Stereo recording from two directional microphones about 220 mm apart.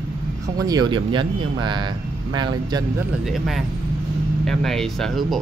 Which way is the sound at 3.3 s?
Centre (ahead or behind).